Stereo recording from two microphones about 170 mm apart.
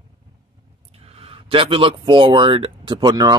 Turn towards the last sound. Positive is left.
turn(degrees=-25)  # may be behind; listen again after turning